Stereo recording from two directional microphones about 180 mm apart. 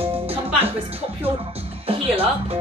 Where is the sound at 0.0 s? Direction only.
30° right (ahead or behind).